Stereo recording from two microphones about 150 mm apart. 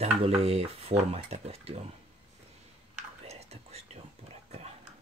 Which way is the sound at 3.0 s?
45° right (ahead or behind).